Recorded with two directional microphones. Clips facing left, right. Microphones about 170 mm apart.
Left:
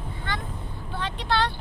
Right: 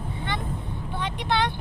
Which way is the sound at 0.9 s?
20° right (ahead or behind).